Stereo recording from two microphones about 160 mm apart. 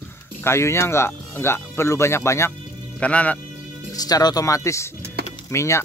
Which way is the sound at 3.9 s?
25° left (ahead or behind).